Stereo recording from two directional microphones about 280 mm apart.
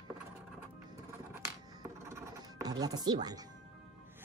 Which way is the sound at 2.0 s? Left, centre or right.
Centre.